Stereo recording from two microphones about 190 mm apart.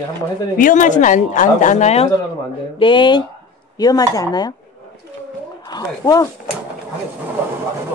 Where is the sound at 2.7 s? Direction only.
25° left (ahead or behind).